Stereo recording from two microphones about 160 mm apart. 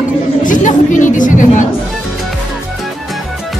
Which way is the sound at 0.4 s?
55° left (ahead or behind).